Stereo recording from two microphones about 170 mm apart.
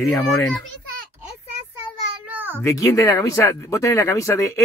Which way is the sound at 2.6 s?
15° left (ahead or behind).